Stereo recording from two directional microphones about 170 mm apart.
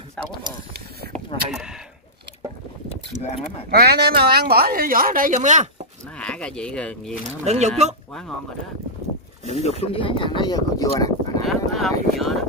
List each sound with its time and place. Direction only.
1.5 s a sound: 5° right (ahead or behind)
2.9 s keys jangling: 40° left (ahead or behind)
3.7 s speech: 65° right (ahead or behind); by 5.7 s 45° right (ahead or behind)
6.1 s speech: 5° left (ahead or behind)
7.4 s speech: 40° right (ahead or behind)
9.5 s speech: 40° left (ahead or behind); by 11.4 s 20° left (ahead or behind)
11.4 s speech: centre (ahead or behind)